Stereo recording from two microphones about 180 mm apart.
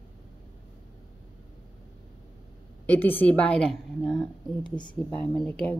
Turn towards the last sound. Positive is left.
turn(degrees=5)  # may be behind; listen again after turning